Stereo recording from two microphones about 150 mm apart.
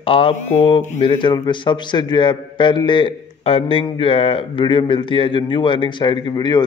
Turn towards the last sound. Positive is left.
turn(degrees=30)  # may be behind; listen again after turning